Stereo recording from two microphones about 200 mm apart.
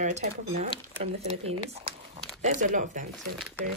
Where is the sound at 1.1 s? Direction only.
30° right (ahead or behind).